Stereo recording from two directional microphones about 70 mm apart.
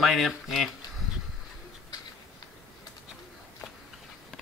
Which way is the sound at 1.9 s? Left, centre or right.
Left.